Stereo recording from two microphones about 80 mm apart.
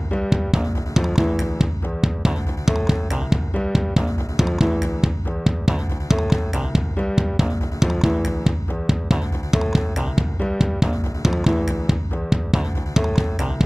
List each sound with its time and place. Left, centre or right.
0.3 s music: centre